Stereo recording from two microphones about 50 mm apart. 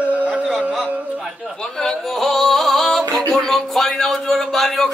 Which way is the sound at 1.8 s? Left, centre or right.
Centre.